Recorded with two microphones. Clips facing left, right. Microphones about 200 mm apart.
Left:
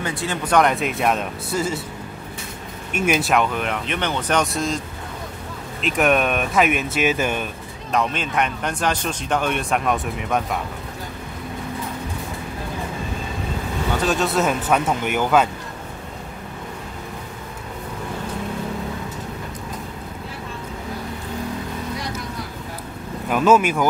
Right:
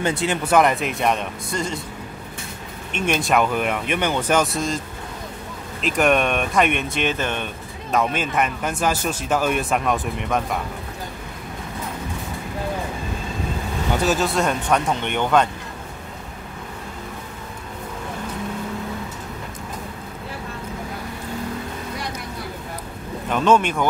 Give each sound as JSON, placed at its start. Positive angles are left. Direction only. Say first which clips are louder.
{"t": 0.0, "sound": "speech", "louder": "right 4 dB", "side_deg": -25}
{"t": 0.5, "sound": "speech", "louder": "even", "side_deg": 0}
{"t": 2.9, "sound": "speech", "louder": "left 1 dB", "side_deg": 5}
{"t": 7.9, "sound": "speech", "louder": "right 1 dB", "side_deg": -5}
{"t": 14.0, "sound": "speech", "louder": "left 1 dB", "side_deg": 0}
{"t": 23.3, "sound": "speech", "louder": "left 2 dB", "side_deg": 5}